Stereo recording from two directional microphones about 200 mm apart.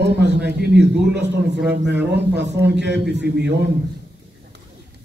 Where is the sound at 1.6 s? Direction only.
55° right (ahead or behind).